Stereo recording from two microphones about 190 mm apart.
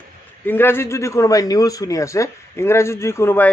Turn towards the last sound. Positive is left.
turn(degrees=10)  # may be behind; listen again after turning